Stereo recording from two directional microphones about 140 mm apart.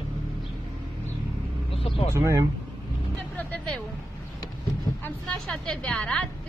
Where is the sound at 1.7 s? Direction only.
40° left (ahead or behind).